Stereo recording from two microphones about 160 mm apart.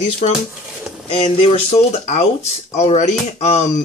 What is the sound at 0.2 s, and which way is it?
Speech, 45° left (ahead or behind).